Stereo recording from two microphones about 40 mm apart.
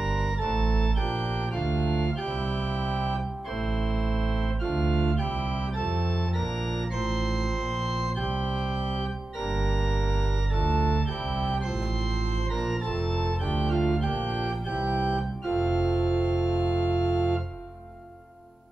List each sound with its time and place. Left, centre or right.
0.0 s organ: centre
0.5 s organ: centre
2.9 s organ: centre
4.6 s organ: centre
10.6 s organ: left
11.0 s organ: centre
12.5 s organ: centre
15.1 s organ: centre